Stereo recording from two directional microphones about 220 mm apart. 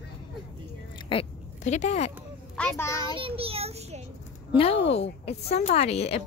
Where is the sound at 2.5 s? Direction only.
10° left (ahead or behind).